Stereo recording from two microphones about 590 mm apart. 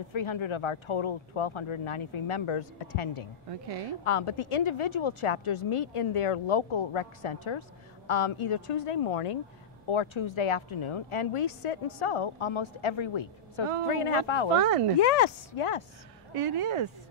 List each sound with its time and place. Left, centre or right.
0.1 s a woman's voice: left
3.4 s speech: right
4.0 s a woman's voice: left
14.5 s speech: right
15.0 s speech: left
16.3 s speech: right